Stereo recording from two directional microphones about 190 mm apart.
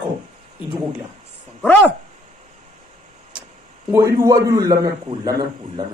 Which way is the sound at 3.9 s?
15° right (ahead or behind).